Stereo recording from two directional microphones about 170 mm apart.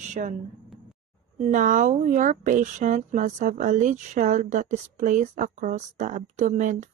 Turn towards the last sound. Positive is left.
turn(degrees=-50)  # may be behind; listen again after turning